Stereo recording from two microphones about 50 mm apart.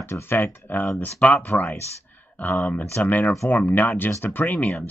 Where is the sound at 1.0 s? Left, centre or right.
Left.